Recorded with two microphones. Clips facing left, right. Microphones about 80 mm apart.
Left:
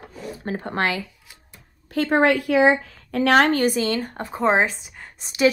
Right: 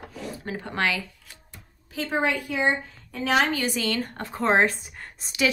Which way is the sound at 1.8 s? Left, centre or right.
Left.